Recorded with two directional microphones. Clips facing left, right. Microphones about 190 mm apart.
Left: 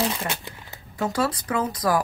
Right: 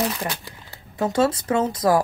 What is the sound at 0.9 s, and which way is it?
Speech, 20° right (ahead or behind).